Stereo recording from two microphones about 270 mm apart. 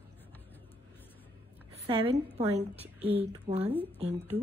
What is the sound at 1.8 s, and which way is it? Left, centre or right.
A woman's voice, centre.